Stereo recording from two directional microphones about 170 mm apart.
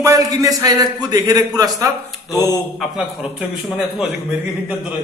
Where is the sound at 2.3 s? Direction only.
20° left (ahead or behind).